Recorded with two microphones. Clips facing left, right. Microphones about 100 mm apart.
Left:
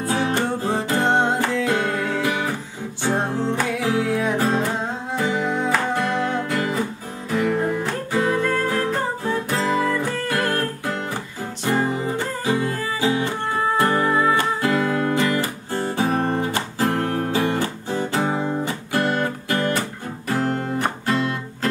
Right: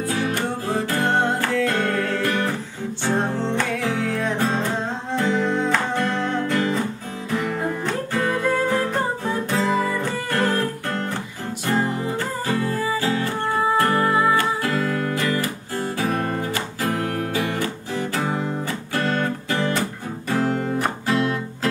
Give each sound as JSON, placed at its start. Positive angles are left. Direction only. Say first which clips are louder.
{"t": 0.1, "sound": "music", "louder": "left 5 dB", "side_deg": 25}
{"t": 11.6, "sound": "music", "louder": "left 1 dB", "side_deg": 10}
{"t": 13.9, "sound": "music", "louder": "even", "side_deg": 0}
{"t": 14.3, "sound": "music", "louder": "left 1 dB", "side_deg": 20}